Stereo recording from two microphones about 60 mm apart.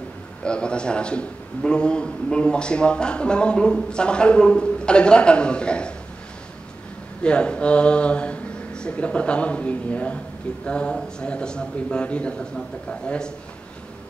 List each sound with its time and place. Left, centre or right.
0.4 s a man's voice: centre
7.2 s a man's voice: centre